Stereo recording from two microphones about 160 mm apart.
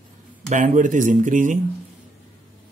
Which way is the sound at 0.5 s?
50° right (ahead or behind).